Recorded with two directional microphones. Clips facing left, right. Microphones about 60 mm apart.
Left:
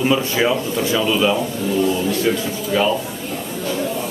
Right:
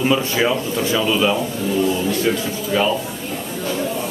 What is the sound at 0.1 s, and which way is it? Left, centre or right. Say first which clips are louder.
A man's voice: even; centre.